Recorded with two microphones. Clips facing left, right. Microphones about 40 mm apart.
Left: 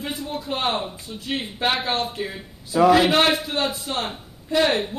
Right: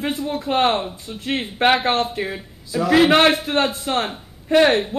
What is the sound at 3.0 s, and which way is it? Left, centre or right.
A man's voice, right.